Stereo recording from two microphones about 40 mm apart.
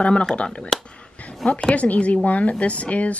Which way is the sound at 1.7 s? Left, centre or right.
Left.